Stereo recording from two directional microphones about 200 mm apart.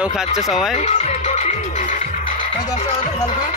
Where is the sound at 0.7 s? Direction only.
35° left (ahead or behind).